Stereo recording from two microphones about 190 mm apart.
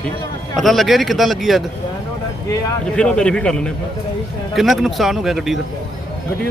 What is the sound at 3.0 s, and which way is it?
A man's voice, 5° left (ahead or behind).